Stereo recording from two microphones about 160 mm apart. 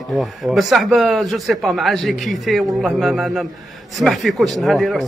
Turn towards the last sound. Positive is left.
turn(degrees=0)  # may be behind; listen again after turning